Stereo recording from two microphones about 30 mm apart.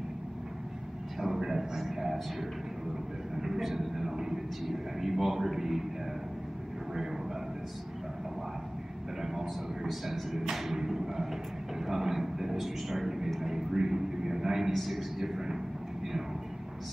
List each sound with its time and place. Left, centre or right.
1.2 s a sound: centre
3.3 s vehicle: centre
3.6 s a man's voice: centre
9.2 s a man's voice: centre
10.8 s a sound: centre
14.9 s a woman's voice: centre